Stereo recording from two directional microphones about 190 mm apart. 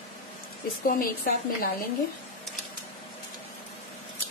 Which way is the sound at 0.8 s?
45° left (ahead or behind).